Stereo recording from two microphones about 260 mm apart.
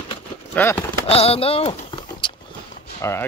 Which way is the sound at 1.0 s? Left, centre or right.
Left.